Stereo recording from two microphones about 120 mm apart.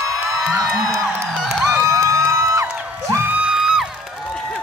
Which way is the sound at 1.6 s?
20° right (ahead or behind).